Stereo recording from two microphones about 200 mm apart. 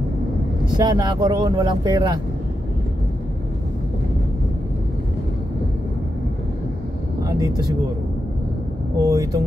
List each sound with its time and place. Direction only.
0.7 s speech: 20° right (ahead or behind)
9.0 s speech: 15° right (ahead or behind)